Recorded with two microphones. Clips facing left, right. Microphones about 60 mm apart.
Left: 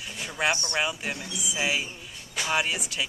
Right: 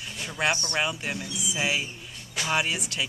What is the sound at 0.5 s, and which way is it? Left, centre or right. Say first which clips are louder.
Speech: even; left.